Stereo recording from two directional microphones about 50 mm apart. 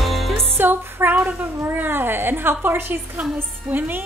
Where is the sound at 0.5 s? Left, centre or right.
Right.